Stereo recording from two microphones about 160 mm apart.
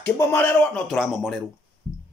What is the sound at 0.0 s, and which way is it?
Speech, 10° left (ahead or behind).